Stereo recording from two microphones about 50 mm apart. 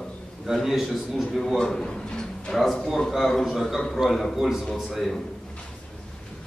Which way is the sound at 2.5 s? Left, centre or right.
Centre.